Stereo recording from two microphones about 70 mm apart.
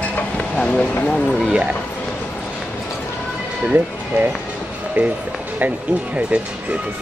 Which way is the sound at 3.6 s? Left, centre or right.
Right.